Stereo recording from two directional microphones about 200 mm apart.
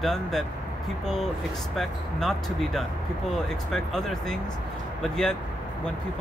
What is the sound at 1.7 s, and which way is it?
Speech, centre (ahead or behind).